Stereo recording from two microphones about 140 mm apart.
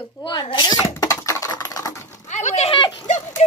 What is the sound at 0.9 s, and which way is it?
Typing, 25° left (ahead or behind).